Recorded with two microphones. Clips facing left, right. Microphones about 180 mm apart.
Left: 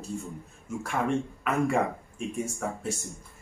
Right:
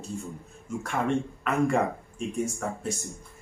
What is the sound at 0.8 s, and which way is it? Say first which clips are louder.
Speech: right 1 dB; 5° left (ahead or behind).